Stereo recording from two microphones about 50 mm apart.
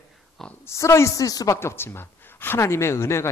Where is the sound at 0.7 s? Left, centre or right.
Left.